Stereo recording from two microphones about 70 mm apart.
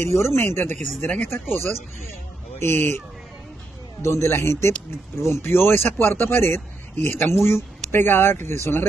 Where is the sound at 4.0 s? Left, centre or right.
Left.